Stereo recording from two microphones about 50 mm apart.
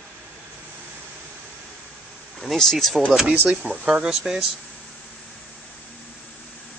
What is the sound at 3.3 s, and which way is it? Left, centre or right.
Speech, right.